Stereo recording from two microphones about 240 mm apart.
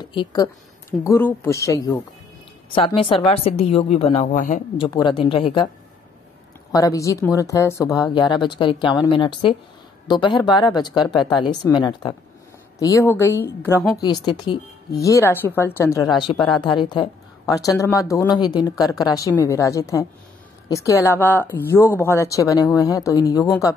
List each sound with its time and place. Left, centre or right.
0.0 s a woman's voice: centre
3.0 s speech: left
6.7 s a woman's voice: centre